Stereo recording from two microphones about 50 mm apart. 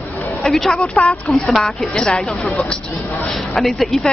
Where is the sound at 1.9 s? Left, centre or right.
Centre.